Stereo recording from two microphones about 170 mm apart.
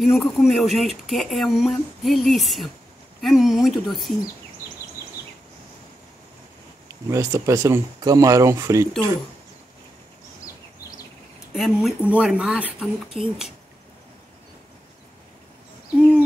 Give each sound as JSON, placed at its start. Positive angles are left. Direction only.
{"t": 0.0, "sound": "speech", "side_deg": 0}
{"t": 6.9, "sound": "speech", "side_deg": -20}
{"t": 11.5, "sound": "speech", "side_deg": 0}
{"t": 16.0, "sound": "owl", "side_deg": -5}